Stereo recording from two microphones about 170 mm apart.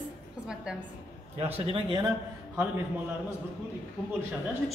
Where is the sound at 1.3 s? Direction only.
35° right (ahead or behind).